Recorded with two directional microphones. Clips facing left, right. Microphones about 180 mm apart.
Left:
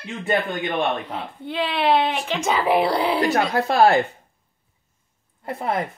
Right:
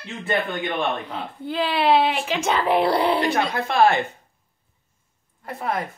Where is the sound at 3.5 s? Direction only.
40° left (ahead or behind).